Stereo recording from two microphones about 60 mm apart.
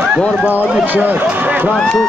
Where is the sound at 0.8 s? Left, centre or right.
Right.